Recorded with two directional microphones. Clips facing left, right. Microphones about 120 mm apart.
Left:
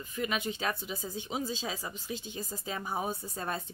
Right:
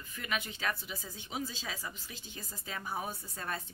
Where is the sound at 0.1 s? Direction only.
20° left (ahead or behind).